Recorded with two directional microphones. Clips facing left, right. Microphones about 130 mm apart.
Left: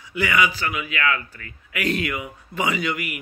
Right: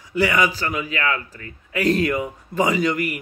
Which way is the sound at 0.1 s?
35° right (ahead or behind).